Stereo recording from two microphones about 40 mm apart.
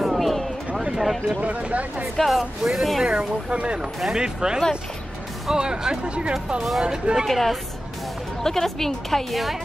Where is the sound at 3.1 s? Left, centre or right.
Right.